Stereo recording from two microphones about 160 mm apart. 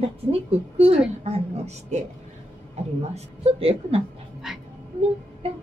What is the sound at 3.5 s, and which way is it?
Speech, 35° right (ahead or behind).